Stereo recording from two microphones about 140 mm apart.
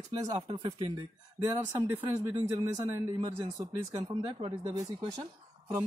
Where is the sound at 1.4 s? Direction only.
25° right (ahead or behind).